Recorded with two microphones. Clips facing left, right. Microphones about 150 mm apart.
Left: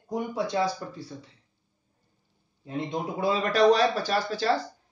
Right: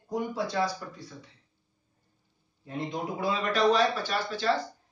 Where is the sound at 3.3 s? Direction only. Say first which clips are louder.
Left 4 dB; 40° left (ahead or behind).